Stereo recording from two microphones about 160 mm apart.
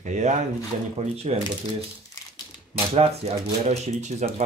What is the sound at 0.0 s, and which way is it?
Speech, 45° right (ahead or behind).